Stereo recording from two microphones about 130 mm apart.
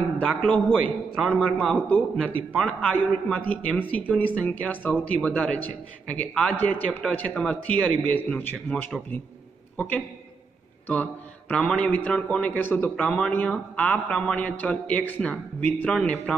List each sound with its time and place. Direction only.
0.4 s a man's voice: 10° left (ahead or behind)
9.8 s a man's voice: 10° left (ahead or behind)